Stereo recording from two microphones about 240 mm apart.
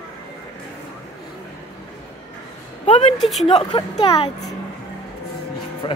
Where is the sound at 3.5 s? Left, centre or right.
Left.